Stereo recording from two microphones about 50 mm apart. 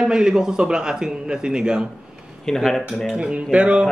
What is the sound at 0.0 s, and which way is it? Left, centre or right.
A man's voice, centre.